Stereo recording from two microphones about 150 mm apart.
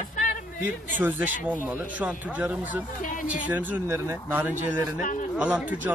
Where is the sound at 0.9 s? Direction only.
10° right (ahead or behind).